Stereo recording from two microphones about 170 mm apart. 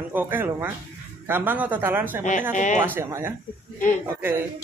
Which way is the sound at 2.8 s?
15° right (ahead or behind).